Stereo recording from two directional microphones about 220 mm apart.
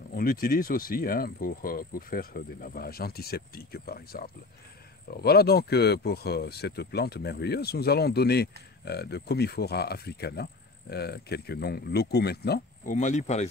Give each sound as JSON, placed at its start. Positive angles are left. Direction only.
{"t": 0.1, "sound": "speech", "side_deg": 40}
{"t": 12.9, "sound": "speech", "side_deg": 30}